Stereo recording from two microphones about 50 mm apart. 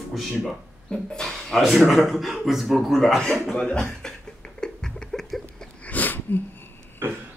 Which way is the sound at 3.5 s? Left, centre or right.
Centre.